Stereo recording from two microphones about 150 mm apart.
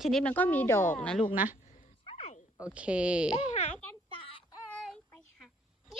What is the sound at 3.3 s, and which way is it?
Speech, 40° left (ahead or behind).